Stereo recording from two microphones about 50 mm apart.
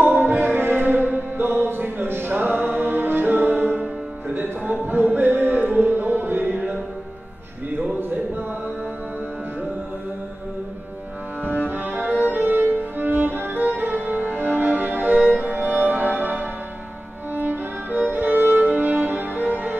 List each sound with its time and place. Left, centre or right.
0.0 s music: right
11.4 s music: right